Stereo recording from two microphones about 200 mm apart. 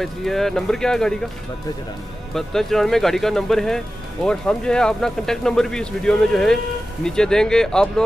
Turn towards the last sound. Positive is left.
turn(degrees=5)  # may be behind; listen again after turning